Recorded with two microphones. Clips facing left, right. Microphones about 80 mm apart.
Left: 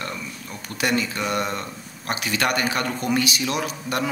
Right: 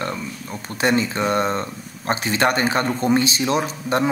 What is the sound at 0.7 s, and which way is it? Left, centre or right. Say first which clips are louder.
A man's voice: right 4 dB; right.